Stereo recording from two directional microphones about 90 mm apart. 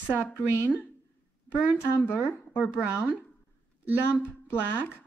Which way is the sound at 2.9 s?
10° right (ahead or behind).